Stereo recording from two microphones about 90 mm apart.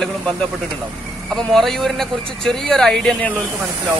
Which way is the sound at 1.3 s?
5° left (ahead or behind).